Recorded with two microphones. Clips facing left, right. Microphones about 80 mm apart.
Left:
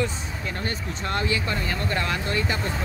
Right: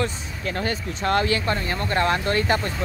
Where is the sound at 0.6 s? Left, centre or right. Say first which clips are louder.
Right 6 dB; right.